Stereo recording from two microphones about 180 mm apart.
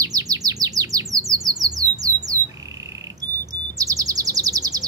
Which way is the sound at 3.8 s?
20° right (ahead or behind).